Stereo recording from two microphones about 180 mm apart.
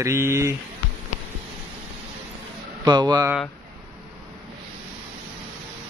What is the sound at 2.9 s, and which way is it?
Speech, 25° right (ahead or behind).